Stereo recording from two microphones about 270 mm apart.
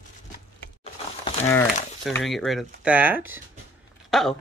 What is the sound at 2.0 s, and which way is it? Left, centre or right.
Speech, centre.